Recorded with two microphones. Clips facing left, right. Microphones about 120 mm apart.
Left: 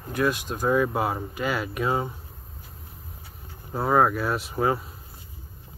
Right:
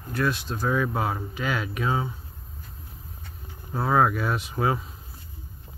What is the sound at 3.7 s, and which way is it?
Speech, 5° left (ahead or behind).